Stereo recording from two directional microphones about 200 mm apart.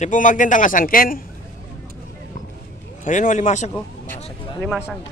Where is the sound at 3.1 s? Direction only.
40° left (ahead or behind).